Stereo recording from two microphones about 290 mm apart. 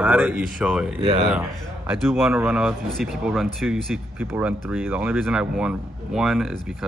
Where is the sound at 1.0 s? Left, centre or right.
Centre.